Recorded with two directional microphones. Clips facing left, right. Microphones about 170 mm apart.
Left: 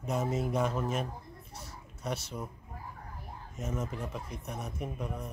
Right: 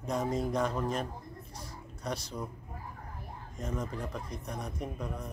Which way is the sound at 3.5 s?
5° left (ahead or behind).